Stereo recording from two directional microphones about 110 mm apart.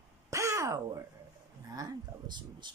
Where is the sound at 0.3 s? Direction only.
25° right (ahead or behind).